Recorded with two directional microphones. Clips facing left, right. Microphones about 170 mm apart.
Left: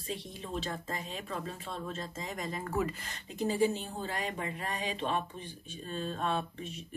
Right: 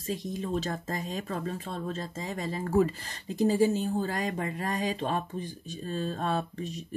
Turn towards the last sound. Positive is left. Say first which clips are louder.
# right 4 dB
turn(degrees=-40)  # may be behind; listen again after turning